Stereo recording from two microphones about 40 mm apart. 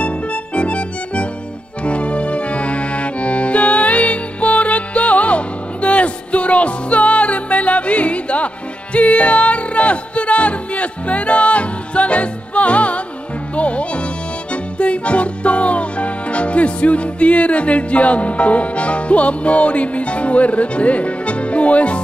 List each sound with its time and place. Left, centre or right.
0.0 s music: left
1.8 s accordion: left
8.9 s music: left